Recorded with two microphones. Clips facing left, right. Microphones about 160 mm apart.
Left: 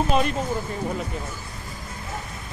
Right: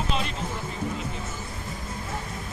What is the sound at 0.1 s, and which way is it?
Speech, 50° left (ahead or behind).